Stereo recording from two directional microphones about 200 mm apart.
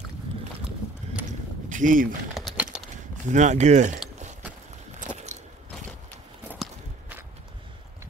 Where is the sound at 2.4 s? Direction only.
Centre (ahead or behind).